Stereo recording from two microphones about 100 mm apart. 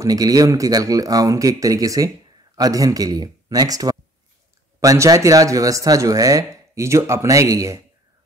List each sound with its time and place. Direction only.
0.0 s speech: 40° right (ahead or behind)